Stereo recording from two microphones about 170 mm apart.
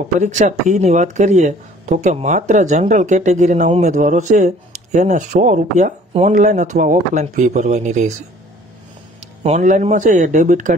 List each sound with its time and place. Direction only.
0.2 s speech: 45° right (ahead or behind)
9.4 s speech: 45° right (ahead or behind)